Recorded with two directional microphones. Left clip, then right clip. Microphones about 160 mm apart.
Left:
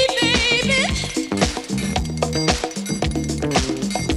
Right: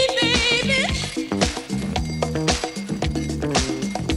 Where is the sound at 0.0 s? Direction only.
50° right (ahead or behind).